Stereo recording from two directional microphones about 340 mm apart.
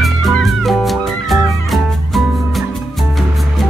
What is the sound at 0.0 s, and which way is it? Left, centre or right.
Music, centre.